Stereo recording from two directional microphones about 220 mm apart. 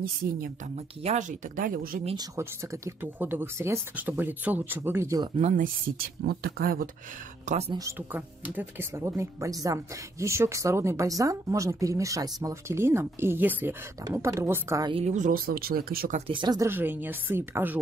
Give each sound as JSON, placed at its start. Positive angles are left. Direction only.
{"t": 1.0, "sound": "speech", "side_deg": -35}
{"t": 2.0, "sound": "speech", "side_deg": -15}
{"t": 6.2, "sound": "speech", "side_deg": -45}
{"t": 7.4, "sound": "speech", "side_deg": -30}
{"t": 7.7, "sound": "speech", "side_deg": -10}
{"t": 16.3, "sound": "speech", "side_deg": -20}